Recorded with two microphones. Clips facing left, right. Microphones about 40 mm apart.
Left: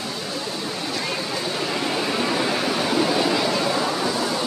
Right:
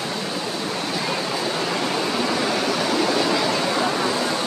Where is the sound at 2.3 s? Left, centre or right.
Centre.